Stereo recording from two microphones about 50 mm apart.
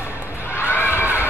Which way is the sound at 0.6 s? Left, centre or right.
Left.